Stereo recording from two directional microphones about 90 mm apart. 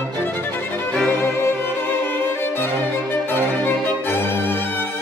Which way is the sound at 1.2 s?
25° left (ahead or behind).